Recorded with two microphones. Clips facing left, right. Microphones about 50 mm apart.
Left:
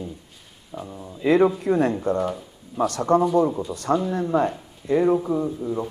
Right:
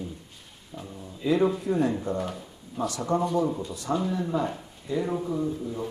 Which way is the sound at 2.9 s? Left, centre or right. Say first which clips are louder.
Left 7 dB; left.